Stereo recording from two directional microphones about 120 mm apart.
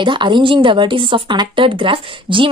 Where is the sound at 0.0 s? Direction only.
40° right (ahead or behind).